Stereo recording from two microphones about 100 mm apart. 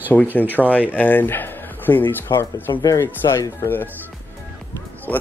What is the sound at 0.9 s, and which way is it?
Speech, 15° left (ahead or behind).